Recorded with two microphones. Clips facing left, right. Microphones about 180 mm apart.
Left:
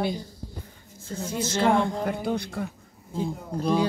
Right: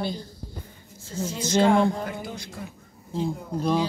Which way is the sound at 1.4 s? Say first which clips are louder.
Right 3 dB; 15° right (ahead or behind).